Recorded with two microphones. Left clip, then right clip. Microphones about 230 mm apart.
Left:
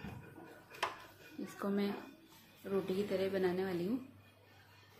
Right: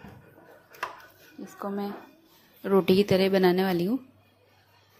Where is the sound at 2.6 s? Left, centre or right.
Right.